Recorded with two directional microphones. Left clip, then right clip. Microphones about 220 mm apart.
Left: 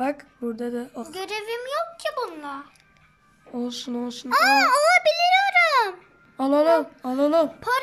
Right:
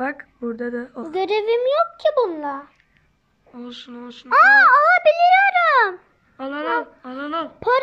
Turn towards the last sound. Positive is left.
turn(degrees=20)  # may be behind; listen again after turning